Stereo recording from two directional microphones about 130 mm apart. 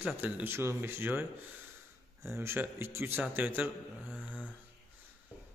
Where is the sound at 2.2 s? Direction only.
20° right (ahead or behind).